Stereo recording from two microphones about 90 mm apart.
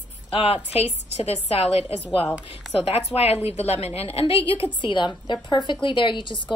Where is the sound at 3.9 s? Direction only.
90° left.